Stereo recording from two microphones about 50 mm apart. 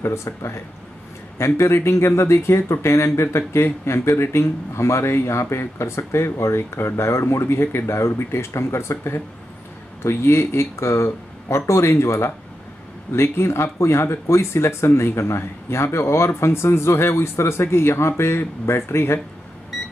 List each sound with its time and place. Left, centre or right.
0.0 s speech: left
15.1 s speech: left